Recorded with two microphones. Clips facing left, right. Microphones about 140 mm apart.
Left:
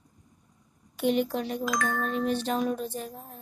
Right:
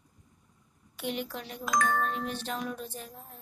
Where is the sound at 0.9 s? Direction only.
35° left (ahead or behind).